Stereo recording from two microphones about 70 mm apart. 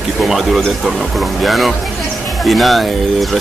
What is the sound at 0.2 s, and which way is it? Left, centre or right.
Speech, centre.